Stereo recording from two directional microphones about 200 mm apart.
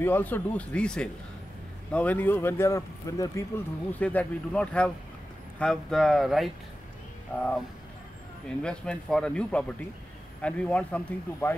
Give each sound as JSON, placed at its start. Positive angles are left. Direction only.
{"t": 0.0, "sound": "speech", "side_deg": 10}
{"t": 8.6, "sound": "speech", "side_deg": 5}